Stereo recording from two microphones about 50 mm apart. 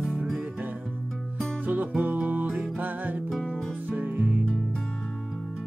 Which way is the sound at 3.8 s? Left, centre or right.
Right.